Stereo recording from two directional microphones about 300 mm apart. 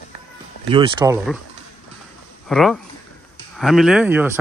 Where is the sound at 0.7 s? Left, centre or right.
Centre.